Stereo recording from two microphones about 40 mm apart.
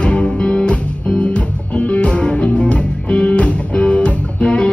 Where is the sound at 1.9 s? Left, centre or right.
Left.